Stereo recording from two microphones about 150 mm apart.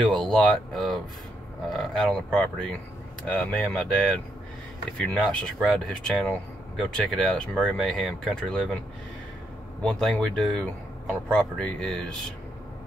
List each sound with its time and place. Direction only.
0.0 s speech: 5° left (ahead or behind)
9.8 s speech: 5° left (ahead or behind)